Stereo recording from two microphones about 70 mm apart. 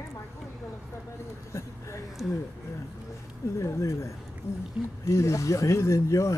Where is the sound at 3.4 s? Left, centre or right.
Left.